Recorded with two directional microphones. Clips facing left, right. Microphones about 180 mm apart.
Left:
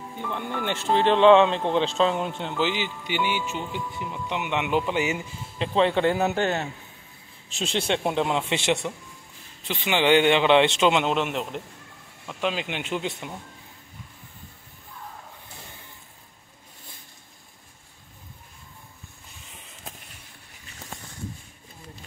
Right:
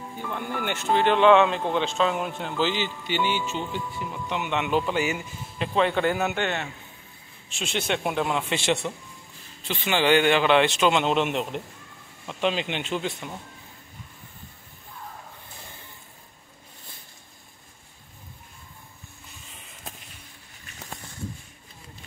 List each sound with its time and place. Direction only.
0.3 s speech: 25° left (ahead or behind)